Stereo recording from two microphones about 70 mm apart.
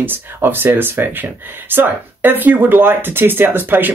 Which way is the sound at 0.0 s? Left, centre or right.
Right.